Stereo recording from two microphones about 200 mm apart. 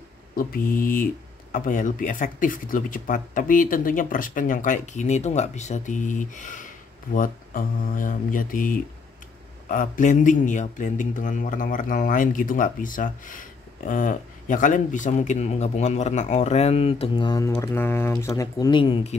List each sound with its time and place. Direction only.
0.4 s a man's voice: 45° left (ahead or behind); by 19.1 s 25° left (ahead or behind)